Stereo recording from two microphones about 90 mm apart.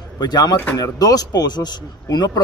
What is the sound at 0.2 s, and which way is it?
Speech, 45° left (ahead or behind).